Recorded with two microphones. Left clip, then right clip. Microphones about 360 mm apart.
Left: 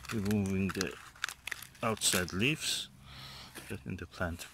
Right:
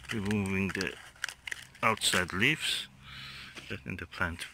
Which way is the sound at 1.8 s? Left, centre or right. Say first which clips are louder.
Right 5 dB; centre.